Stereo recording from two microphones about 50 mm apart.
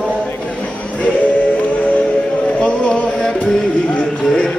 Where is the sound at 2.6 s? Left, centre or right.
Centre.